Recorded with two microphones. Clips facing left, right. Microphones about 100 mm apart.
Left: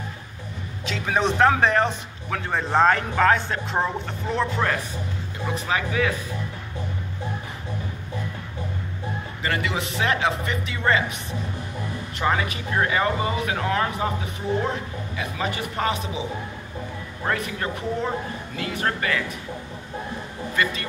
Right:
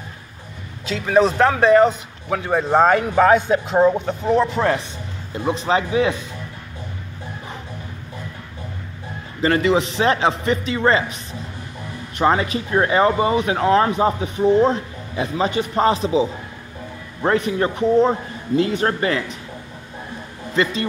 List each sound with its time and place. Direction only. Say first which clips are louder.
0.8 s speech: right 7 dB; centre (ahead or behind); by 4.5 s 15° right (ahead or behind)
5.7 s speech: right 5 dB; 25° right (ahead or behind)
9.4 s speech: right 10 dB; 30° right (ahead or behind)
12.2 s speech: right 6 dB; 30° right (ahead or behind)
20.6 s speech: right 5 dB; 30° right (ahead or behind)